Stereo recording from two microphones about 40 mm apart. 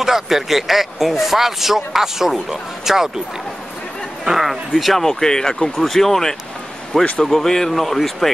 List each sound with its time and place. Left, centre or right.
0.0 s a man's voice: centre
4.2 s speech: centre
5.0 s speech: centre